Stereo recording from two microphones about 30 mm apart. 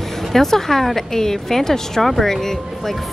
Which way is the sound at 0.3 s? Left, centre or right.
Centre.